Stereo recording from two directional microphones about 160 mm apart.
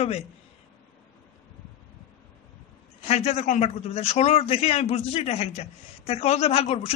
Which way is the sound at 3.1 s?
40° left (ahead or behind).